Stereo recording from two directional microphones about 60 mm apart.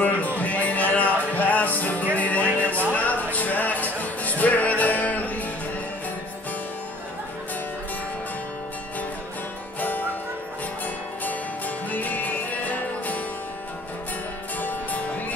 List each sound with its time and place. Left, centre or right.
0.0 s music: left
9.8 s music: left
11.2 s music: left
14.6 s music: left